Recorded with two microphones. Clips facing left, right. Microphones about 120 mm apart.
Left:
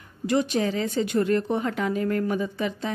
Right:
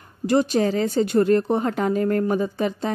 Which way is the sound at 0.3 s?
40° right (ahead or behind).